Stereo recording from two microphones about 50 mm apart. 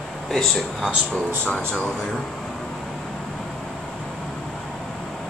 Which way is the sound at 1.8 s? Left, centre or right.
Centre.